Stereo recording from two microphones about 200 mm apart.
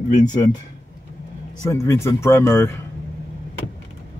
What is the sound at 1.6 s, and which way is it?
Speech, 15° left (ahead or behind).